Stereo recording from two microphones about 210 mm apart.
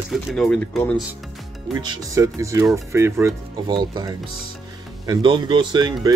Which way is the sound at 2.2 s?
15° right (ahead or behind).